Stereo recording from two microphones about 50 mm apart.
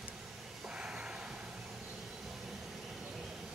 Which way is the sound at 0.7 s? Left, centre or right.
Centre.